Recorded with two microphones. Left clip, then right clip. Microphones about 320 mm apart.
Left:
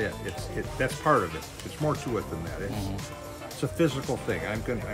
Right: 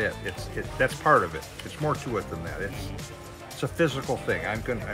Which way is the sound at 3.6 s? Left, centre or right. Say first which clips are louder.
Right 1 dB; centre.